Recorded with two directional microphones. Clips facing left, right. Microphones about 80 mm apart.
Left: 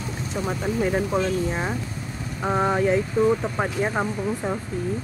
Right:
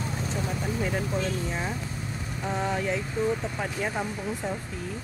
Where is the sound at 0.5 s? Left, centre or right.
Left.